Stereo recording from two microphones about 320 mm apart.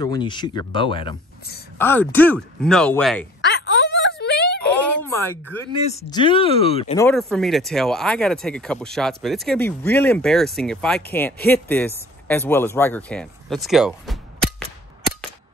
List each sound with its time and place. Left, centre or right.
0.0 s speech: centre
3.3 s a sound: left
5.0 s speech: centre
7.1 s speech: centre